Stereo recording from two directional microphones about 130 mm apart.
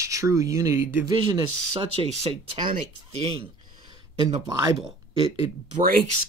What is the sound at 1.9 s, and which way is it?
Speech, 45° right (ahead or behind).